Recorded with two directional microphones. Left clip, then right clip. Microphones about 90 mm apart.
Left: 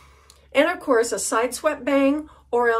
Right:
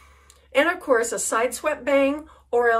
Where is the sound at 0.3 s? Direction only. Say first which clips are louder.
Left 1 dB; 35° left (ahead or behind).